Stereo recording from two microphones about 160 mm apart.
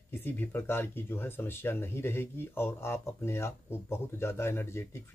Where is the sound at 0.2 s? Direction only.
10° left (ahead or behind).